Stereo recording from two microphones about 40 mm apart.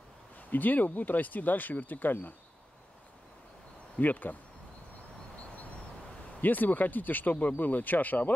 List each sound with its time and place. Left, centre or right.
0.4 s speech: left
4.0 s speech: left
6.4 s speech: left